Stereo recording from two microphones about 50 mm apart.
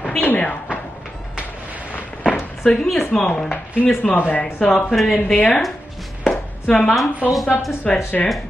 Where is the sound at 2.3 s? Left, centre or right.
Left.